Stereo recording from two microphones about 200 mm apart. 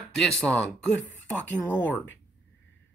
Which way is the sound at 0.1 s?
Centre (ahead or behind).